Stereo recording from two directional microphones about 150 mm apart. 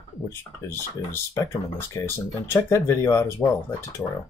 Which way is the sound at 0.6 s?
15° left (ahead or behind).